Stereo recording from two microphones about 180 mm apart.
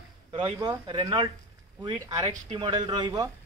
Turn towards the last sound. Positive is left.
turn(degrees=-20)  # may be behind; listen again after turning